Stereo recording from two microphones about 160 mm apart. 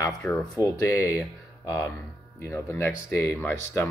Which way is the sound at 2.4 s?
15° left (ahead or behind).